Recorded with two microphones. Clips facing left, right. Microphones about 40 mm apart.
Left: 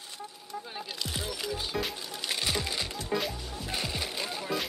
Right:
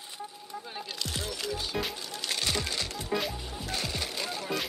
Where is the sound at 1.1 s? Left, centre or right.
Centre.